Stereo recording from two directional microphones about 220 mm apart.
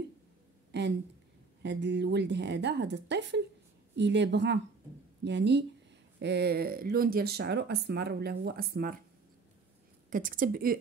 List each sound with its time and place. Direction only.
0.7 s a sound: 50° right (ahead or behind)
1.6 s speech: 55° right (ahead or behind)
10.0 s a woman's voice: 40° right (ahead or behind)